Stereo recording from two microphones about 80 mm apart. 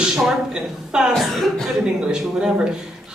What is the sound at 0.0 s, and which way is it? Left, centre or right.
Speech, centre.